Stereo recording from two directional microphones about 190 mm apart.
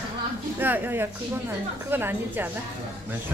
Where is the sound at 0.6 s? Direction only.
10° right (ahead or behind).